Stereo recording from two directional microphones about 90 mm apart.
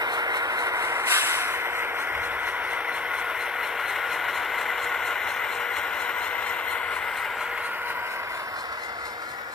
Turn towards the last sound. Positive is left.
turn(degrees=-10)  # may be behind; listen again after turning